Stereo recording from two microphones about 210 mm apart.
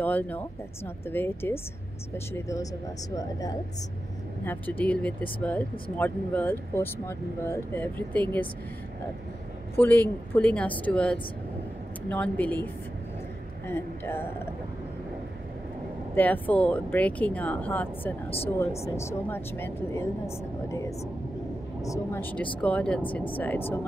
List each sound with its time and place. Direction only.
0.0 s speech: 10° left (ahead or behind)
9.8 s speech: 10° left (ahead or behind)
13.7 s speech: 10° left (ahead or behind)
16.2 s speech: 10° left (ahead or behind)